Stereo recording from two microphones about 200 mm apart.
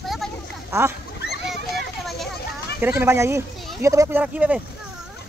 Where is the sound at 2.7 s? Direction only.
10° right (ahead or behind).